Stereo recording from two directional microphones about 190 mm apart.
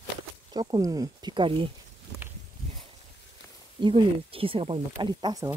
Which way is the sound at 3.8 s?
25° right (ahead or behind).